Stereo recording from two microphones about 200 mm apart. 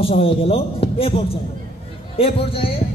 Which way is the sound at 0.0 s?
30° left (ahead or behind).